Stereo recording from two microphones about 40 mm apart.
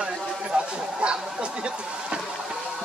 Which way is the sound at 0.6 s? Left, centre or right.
Right.